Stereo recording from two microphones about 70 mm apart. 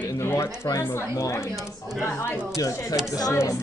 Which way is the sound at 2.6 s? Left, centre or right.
Left.